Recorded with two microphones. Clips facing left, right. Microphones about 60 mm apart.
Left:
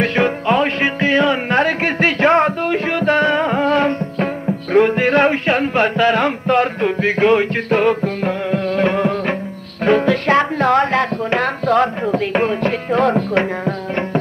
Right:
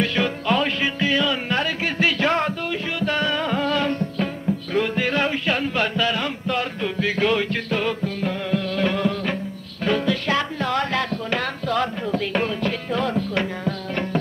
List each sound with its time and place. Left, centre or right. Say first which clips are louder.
0.0 s music: left 6 dB; left